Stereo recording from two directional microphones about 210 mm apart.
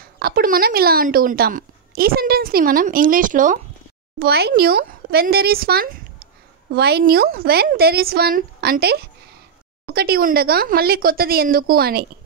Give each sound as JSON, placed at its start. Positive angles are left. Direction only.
{"t": 0.2, "sound": "a woman's voice", "side_deg": -45}